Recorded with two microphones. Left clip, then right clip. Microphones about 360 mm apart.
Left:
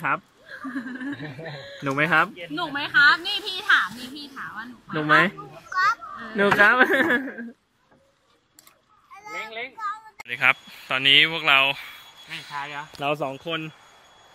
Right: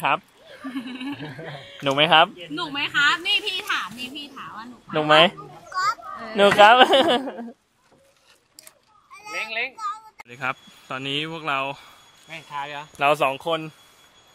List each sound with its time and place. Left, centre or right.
0.7 s a child's voice: centre
9.8 s speech: centre
13.0 s speech: right
13.5 s speech: centre